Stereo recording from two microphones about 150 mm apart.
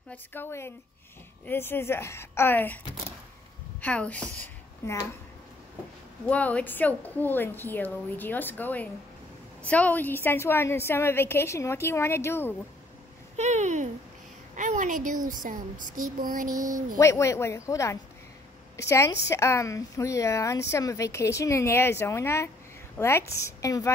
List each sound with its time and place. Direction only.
0.1 s a woman's voice: 15° left (ahead or behind)
3.8 s a woman's voice: 10° left (ahead or behind)
6.2 s a woman's voice: 10° left (ahead or behind)
13.4 s speech: 50° right (ahead or behind)
14.6 s a sound: 55° right (ahead or behind)
15.2 s speech: 65° right (ahead or behind)
17.0 s a woman's voice: 20° left (ahead or behind)